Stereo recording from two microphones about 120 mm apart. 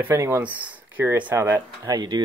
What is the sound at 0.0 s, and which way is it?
Speech, 20° right (ahead or behind).